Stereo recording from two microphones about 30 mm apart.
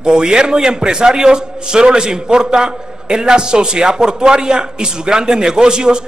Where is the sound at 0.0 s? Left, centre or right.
Right.